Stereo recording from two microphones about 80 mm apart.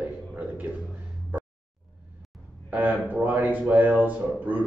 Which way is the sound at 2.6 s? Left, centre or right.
Right.